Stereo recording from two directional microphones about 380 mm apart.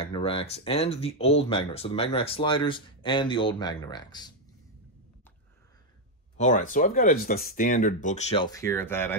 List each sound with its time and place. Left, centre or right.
0.0 s speech: centre
6.3 s speech: centre